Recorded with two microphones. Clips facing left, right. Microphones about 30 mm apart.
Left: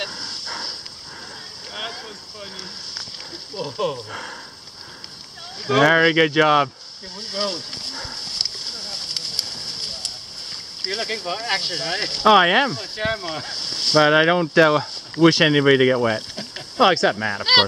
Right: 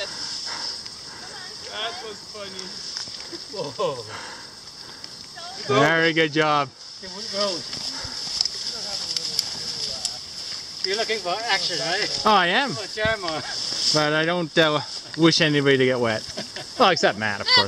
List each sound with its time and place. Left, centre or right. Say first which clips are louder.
0.0 s dog: left 2 dB; centre
1.7 s a sound: right 1 dB; centre
2.0 s speech: right 1 dB; centre
2.5 s speech: left 1 dB; centre
5.6 s speech: left 3 dB; centre
7.2 s a sound: even; centre
10.9 s speech: right 2 dB; centre
17.4 s speech: left 4 dB; centre